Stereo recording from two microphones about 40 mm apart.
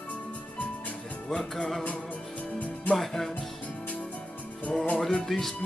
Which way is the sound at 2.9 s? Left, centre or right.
Centre.